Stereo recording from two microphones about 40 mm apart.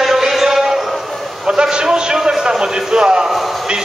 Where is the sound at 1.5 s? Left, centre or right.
Right.